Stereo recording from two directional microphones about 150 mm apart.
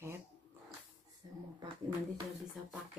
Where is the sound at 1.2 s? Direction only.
25° right (ahead or behind).